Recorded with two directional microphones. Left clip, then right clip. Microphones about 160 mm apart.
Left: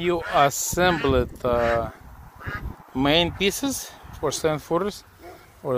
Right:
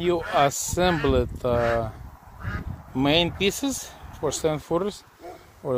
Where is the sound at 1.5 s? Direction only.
40° left (ahead or behind).